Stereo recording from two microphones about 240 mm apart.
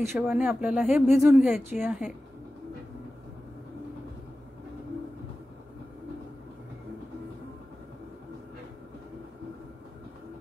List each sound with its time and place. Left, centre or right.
0.1 s a woman's voice: centre